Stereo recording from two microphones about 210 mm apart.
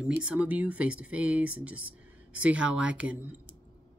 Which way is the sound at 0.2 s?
5° right (ahead or behind).